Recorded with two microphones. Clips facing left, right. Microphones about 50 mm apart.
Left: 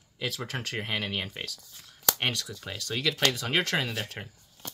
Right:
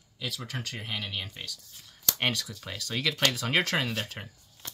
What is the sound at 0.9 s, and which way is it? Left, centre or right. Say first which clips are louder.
Speech: left 3 dB; left.